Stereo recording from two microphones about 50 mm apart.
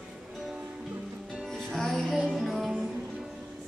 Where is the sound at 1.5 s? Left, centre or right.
Centre.